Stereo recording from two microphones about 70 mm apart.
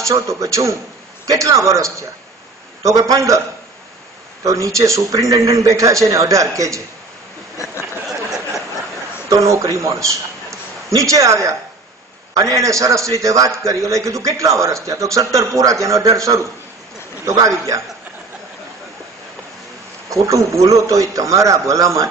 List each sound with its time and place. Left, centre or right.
0.0 s a man's voice: right
7.5 s a sound: left
9.3 s a man's voice: right
20.1 s a man's voice: right